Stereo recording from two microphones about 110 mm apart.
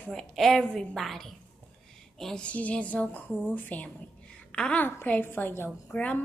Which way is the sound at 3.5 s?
15° left (ahead or behind).